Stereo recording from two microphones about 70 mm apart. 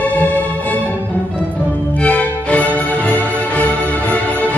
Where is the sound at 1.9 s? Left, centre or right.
Left.